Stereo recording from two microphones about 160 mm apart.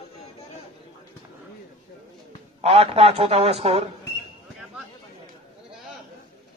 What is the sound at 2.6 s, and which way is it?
A man's voice, 40° right (ahead or behind).